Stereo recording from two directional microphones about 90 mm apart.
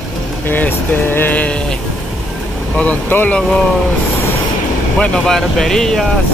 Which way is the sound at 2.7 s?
20° left (ahead or behind).